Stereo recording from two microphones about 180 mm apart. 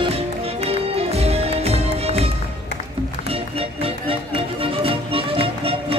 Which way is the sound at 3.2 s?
30° right (ahead or behind).